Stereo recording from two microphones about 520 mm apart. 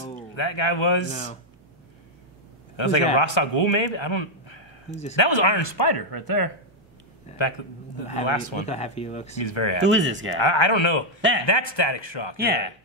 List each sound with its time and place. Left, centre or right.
0.3 s a man's voice: left
2.7 s a man's voice: left
8.2 s a man's voice: left
8.6 s speech: centre
9.3 s a man's voice: left
9.8 s speech: right
10.4 s a man's voice: left
11.1 s a man's voice: right
11.4 s speech: left
12.4 s speech: centre